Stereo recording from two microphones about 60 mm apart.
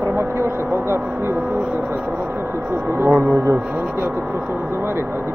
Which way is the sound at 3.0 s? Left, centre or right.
Right.